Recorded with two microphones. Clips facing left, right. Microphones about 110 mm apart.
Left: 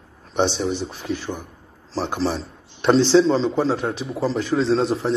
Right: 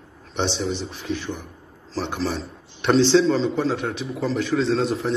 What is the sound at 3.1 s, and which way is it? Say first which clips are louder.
A man's voice: left 2 dB; 40° left (ahead or behind).